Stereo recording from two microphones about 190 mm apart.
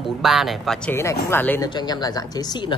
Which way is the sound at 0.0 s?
Centre (ahead or behind).